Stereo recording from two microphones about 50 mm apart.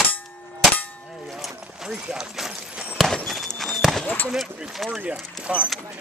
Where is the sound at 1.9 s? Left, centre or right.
Right.